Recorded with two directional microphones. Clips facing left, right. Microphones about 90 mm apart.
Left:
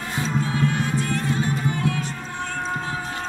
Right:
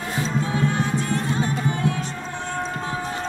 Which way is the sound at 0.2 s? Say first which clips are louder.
Even; 25° right (ahead or behind).